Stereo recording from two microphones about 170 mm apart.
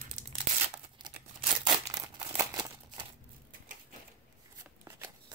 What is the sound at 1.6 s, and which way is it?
Crumpling, 20° right (ahead or behind).